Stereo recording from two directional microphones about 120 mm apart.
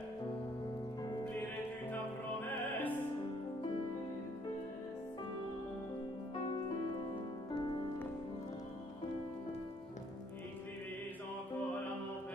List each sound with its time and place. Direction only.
2.4 s music: 15° left (ahead or behind)
7.5 s music: 40° left (ahead or behind)